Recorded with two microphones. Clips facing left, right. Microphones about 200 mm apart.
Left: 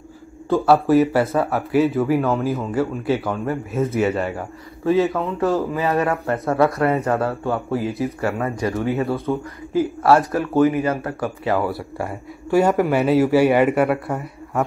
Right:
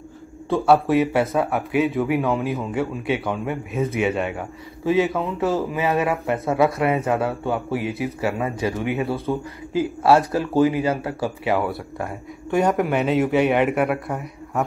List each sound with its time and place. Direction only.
0.5 s speech: centre (ahead or behind)
5.9 s speech: 10° right (ahead or behind)
8.7 s speech: 15° right (ahead or behind)
9.0 s speech: centre (ahead or behind)
10.0 s speech: 20° right (ahead or behind)
11.4 s speech: centre (ahead or behind)